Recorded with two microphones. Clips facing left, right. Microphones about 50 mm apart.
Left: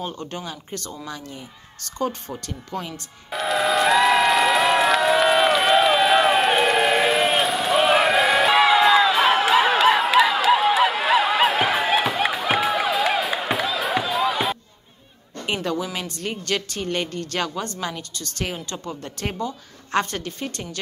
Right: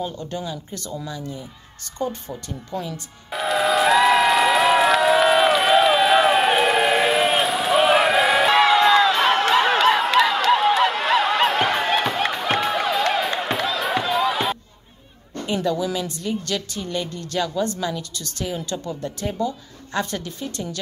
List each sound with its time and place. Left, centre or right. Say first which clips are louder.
0.0 s speech: right 2 dB; left
3.3 s applause: right 1 dB; centre
15.4 s speech: right 3 dB; left